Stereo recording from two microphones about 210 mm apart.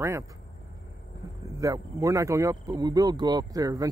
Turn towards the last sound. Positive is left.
turn(degrees=-15)  # may be behind; listen again after turning